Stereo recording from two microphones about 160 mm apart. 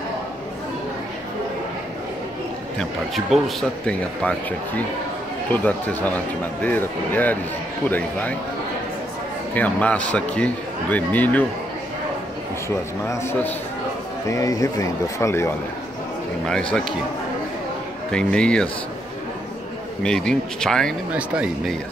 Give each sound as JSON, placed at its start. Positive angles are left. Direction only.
{"t": 2.8, "sound": "speech", "side_deg": 0}
{"t": 9.5, "sound": "speech", "side_deg": 10}
{"t": 12.6, "sound": "speech", "side_deg": 15}
{"t": 18.1, "sound": "speech", "side_deg": 5}
{"t": 20.0, "sound": "speech", "side_deg": 5}
{"t": 21.1, "sound": "speech", "side_deg": -5}